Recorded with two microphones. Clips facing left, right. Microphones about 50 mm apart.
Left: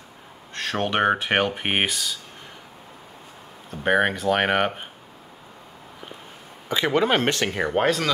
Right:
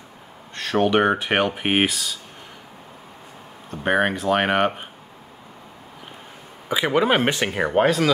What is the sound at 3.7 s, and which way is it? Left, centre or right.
Speech, centre.